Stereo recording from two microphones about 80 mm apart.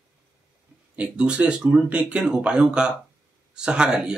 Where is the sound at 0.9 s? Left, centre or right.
Centre.